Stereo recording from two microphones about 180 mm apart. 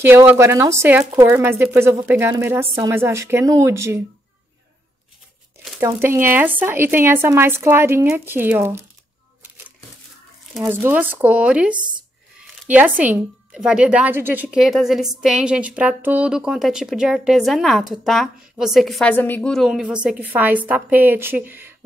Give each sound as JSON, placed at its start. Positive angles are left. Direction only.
{"t": 0.0, "sound": "speech", "side_deg": -10}
{"t": 5.8, "sound": "speech", "side_deg": -15}
{"t": 10.7, "sound": "speech", "side_deg": -10}
{"t": 11.7, "sound": "a sound", "side_deg": -25}
{"t": 12.6, "sound": "a woman's voice", "side_deg": -10}